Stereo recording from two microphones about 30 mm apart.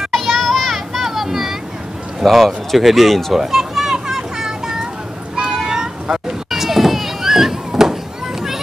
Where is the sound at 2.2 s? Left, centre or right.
Centre.